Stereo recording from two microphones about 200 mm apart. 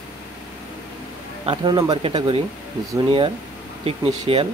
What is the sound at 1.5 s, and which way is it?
Speech, 20° right (ahead or behind).